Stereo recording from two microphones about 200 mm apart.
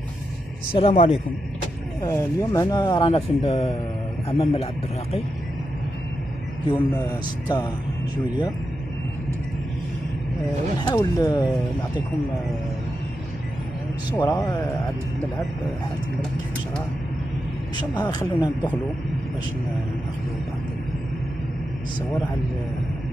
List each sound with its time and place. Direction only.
0.7 s speech: 30° left (ahead or behind)
2.0 s speech: 20° left (ahead or behind)
6.7 s speech: 20° left (ahead or behind)
10.8 s speech: 20° left (ahead or behind)
14.1 s speech: 20° left (ahead or behind)
17.9 s speech: 10° left (ahead or behind)